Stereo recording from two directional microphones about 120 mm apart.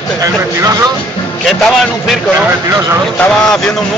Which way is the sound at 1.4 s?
Centre (ahead or behind).